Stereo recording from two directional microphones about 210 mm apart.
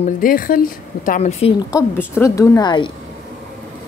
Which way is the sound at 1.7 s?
10° left (ahead or behind).